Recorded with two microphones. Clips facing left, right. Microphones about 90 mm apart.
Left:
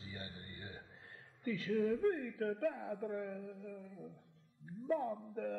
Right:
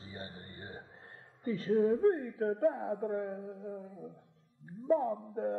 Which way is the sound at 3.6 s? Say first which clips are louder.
Right 6 dB; 35° right (ahead or behind).